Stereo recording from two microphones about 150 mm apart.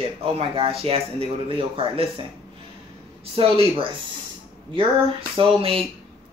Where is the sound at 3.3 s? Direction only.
35° right (ahead or behind).